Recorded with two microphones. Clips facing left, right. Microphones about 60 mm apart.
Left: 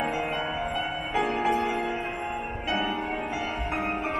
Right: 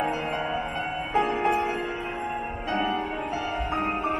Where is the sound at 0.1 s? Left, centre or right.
Right.